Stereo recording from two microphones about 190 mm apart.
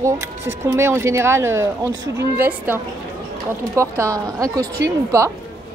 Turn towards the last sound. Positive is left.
turn(degrees=-15)  # may be behind; listen again after turning